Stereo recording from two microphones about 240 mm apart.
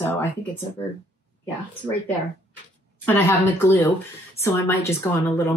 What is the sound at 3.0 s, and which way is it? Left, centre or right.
Speech, centre.